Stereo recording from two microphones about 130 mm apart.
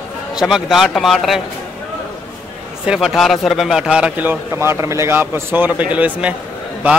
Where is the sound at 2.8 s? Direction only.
5° right (ahead or behind).